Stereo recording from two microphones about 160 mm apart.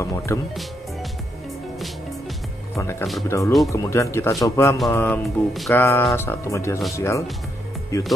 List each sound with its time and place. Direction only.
0.0 s music: 20° left (ahead or behind)
2.7 s speech: 20° left (ahead or behind)